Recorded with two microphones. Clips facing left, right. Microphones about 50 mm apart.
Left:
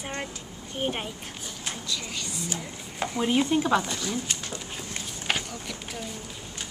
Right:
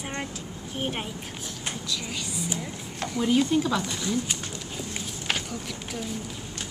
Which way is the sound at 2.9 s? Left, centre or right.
Centre.